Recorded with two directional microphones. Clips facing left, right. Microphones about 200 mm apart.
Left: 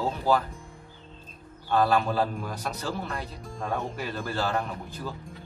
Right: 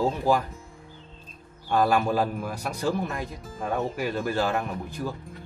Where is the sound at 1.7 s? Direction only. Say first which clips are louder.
Right 1 dB; 15° right (ahead or behind).